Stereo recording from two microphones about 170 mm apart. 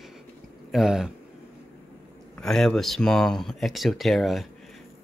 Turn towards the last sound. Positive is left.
turn(degrees=0)  # may be behind; listen again after turning